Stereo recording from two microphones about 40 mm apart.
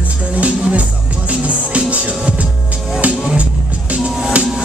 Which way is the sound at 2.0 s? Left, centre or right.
Right.